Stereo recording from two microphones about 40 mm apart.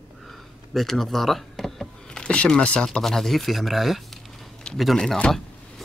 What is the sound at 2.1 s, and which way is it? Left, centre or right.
Speech, left.